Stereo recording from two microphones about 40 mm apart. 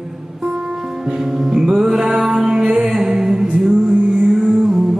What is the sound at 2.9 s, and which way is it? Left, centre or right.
Music, centre.